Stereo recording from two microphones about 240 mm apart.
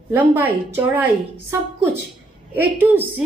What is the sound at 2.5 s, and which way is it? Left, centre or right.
Speech, centre.